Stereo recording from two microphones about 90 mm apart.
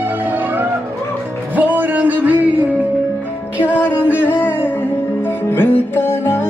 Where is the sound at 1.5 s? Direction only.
20° right (ahead or behind).